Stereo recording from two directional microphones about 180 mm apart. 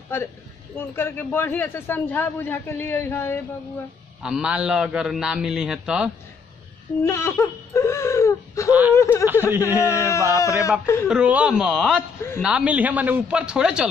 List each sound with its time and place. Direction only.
0.1 s a man's voice: 10° left (ahead or behind)
4.2 s a man's voice: 5° right (ahead or behind)
7.0 s a man's voice: 15° left (ahead or behind)
9.3 s speech: 10° right (ahead or behind)
9.8 s a man's voice: 15° left (ahead or behind)
11.1 s a man's voice: 5° right (ahead or behind)